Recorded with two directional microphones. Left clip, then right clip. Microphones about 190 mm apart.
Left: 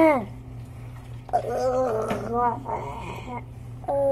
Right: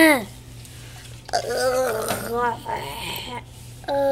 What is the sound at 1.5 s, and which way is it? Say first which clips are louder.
Gargling: right 4 dB; 35° right (ahead or behind).